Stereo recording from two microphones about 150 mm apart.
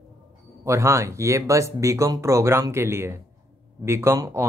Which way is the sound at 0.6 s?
20° right (ahead or behind).